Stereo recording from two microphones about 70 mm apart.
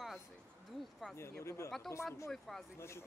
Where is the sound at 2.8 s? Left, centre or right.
Left.